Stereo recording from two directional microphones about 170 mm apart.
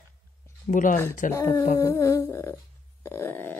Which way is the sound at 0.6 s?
50° left (ahead or behind).